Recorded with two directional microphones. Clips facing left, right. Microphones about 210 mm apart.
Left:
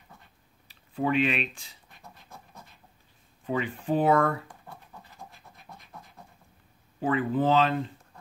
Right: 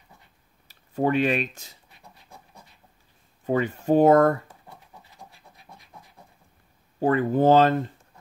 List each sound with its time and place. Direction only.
0.7 s speech: 40° right (ahead or behind)
3.4 s speech: 45° right (ahead or behind)
7.0 s speech: 40° right (ahead or behind)